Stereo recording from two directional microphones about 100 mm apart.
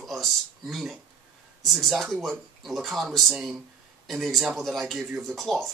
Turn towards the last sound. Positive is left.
turn(degrees=0)  # may be behind; listen again after turning